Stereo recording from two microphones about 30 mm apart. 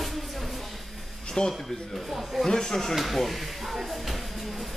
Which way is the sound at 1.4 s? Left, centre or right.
Left.